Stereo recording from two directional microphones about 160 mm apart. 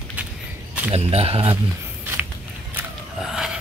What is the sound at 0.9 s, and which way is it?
Speech, 40° right (ahead or behind).